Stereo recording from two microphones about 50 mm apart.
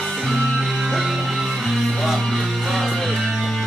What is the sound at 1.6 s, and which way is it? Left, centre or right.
Music, centre.